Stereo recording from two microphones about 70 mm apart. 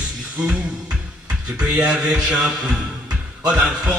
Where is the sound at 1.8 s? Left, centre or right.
Centre.